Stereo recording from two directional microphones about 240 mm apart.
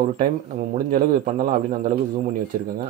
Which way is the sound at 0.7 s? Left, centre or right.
Right.